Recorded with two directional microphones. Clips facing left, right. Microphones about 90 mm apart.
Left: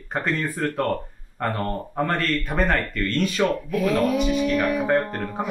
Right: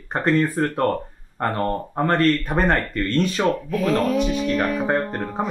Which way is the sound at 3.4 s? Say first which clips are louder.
Even; 20° right (ahead or behind).